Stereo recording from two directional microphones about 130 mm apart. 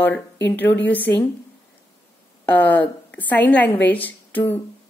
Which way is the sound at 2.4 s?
15° left (ahead or behind).